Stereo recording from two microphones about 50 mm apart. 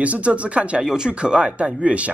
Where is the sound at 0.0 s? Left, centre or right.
Right.